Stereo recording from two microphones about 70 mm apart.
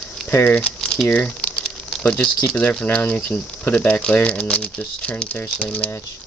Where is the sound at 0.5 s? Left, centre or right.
Centre.